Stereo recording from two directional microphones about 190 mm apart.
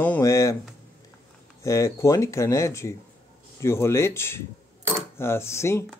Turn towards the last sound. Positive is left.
turn(degrees=15)  # may be behind; listen again after turning